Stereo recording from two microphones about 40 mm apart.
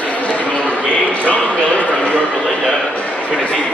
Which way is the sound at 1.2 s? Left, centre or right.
Left.